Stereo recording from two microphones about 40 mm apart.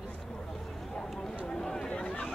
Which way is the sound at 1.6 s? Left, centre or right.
Centre.